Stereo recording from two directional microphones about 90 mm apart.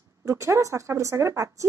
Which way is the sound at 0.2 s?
35° right (ahead or behind).